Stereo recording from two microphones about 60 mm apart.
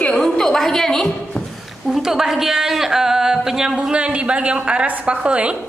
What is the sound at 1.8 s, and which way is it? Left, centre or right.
A woman's voice, centre.